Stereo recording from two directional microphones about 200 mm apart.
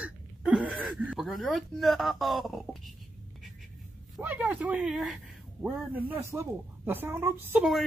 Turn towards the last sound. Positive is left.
turn(degrees=-5)  # may be behind; listen again after turning